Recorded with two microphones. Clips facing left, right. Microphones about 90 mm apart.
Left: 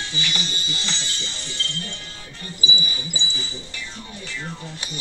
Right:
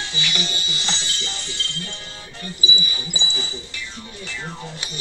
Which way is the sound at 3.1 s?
20° right (ahead or behind).